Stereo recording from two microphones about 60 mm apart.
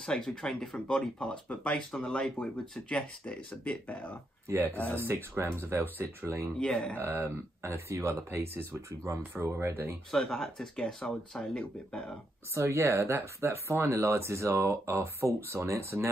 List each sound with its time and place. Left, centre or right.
0.0 s speech: centre
1.9 s speech: centre
2.3 s speech: left
4.5 s speech: right
6.6 s speech: centre
7.0 s speech: right
10.1 s speech: centre
12.5 s speech: right